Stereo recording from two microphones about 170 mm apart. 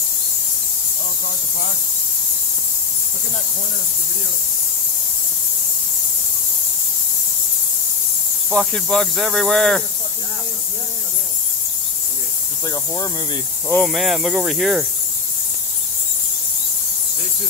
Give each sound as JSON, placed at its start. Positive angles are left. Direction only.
{"t": 8.5, "sound": "cricket", "side_deg": 0}
{"t": 12.6, "sound": "speech", "side_deg": 20}
{"t": 13.7, "sound": "cricket", "side_deg": 0}